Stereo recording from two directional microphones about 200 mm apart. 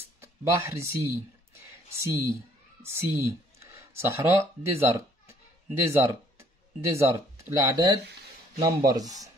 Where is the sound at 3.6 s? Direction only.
15° right (ahead or behind).